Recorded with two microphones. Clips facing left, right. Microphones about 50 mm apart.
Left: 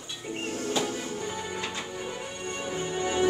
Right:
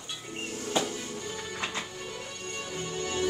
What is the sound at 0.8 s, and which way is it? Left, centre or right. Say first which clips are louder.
Music: left 3 dB; centre.